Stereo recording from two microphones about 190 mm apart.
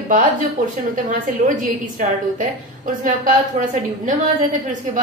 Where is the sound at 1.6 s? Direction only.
45° right (ahead or behind).